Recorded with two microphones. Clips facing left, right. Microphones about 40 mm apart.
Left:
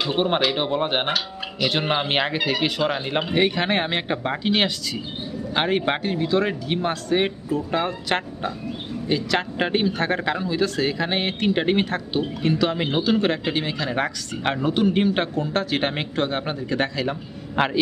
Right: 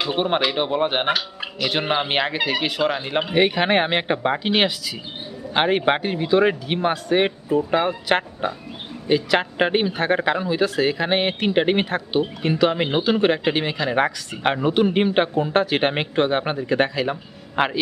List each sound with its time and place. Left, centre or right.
0.0 s speech: centre